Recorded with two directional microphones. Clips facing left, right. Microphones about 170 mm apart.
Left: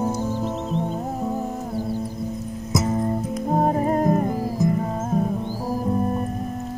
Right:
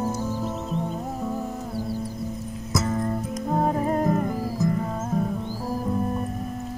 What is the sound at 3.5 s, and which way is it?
Music, 45° left (ahead or behind).